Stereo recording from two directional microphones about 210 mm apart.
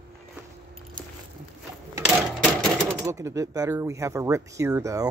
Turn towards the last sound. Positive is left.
turn(degrees=-15)  # may be behind; listen again after turning